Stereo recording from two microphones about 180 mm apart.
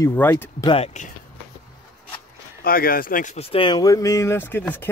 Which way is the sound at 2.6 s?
55° left (ahead or behind).